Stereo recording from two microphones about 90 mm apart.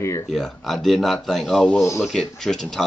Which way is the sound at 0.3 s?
Centre (ahead or behind).